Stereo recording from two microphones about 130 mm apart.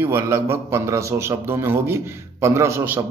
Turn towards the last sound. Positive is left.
turn(degrees=-15)  # may be behind; listen again after turning